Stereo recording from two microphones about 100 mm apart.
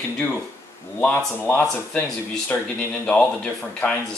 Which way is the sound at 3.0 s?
10° left (ahead or behind).